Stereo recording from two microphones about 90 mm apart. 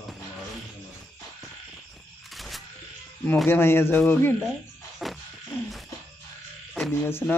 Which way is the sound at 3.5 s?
25° left (ahead or behind).